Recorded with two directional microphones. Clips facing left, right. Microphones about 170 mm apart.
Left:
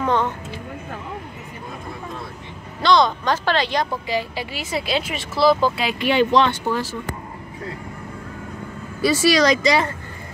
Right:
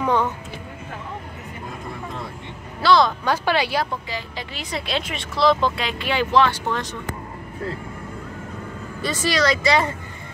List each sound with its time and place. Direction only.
0.0 s speech: 10° right (ahead or behind)
2.8 s speech: 5° right (ahead or behind)
4.1 s speech: 5° left (ahead or behind)
5.9 s speech: 20° left (ahead or behind)
6.7 s speech: 5° left (ahead or behind)
9.0 s speech: 10° left (ahead or behind)